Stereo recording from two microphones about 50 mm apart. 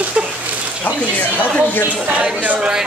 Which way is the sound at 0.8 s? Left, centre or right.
Left.